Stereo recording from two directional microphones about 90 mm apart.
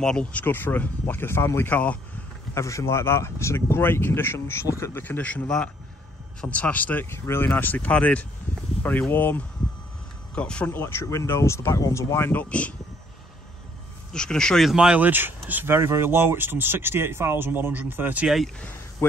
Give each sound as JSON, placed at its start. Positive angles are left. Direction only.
{"t": 0.0, "sound": "speech", "side_deg": 10}
{"t": 2.5, "sound": "speech", "side_deg": 35}
{"t": 5.0, "sound": "speech", "side_deg": 15}
{"t": 10.3, "sound": "speech", "side_deg": 10}
{"t": 10.7, "sound": "speech", "side_deg": 25}
{"t": 14.1, "sound": "speech", "side_deg": 10}
{"t": 15.0, "sound": "speech", "side_deg": -20}
{"t": 18.2, "sound": "speech", "side_deg": 0}